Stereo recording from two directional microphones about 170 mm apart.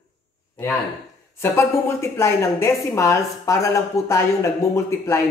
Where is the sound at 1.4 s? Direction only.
15° left (ahead or behind).